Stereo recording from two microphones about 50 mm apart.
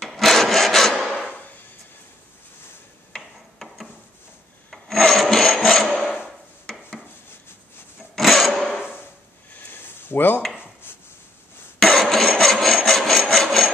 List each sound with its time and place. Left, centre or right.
0.1 s sawing: centre
3.2 s tick-tock: centre
4.6 s filing: centre
8.2 s a sound: centre
9.7 s a sound: left
11.8 s rub: centre
13.3 s wood: centre